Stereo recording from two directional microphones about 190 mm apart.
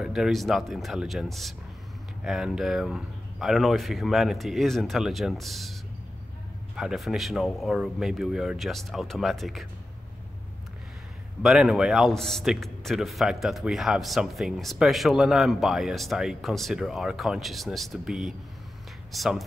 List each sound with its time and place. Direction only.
0.0 s a man's voice: centre (ahead or behind)
6.8 s a man's voice: 5° right (ahead or behind)
11.4 s a man's voice: centre (ahead or behind)